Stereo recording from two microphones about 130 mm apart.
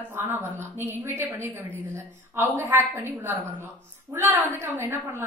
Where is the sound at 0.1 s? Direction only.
15° right (ahead or behind).